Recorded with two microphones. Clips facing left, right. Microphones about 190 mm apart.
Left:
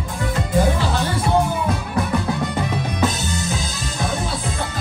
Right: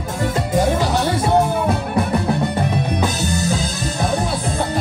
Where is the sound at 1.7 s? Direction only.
60° right (ahead or behind).